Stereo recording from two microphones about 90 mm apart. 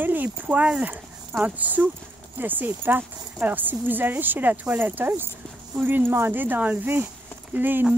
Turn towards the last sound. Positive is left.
turn(degrees=-20)  # may be behind; listen again after turning